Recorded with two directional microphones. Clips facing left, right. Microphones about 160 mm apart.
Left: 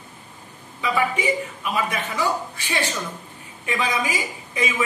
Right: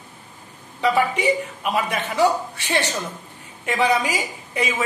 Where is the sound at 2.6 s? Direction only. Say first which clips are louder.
Right 3 dB; 70° right (ahead or behind).